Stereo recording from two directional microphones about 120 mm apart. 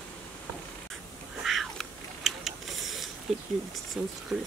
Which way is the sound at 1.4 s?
Centre (ahead or behind).